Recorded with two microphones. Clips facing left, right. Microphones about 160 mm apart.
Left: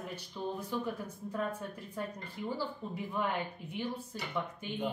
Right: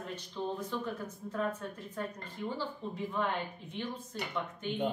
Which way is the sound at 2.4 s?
10° left (ahead or behind).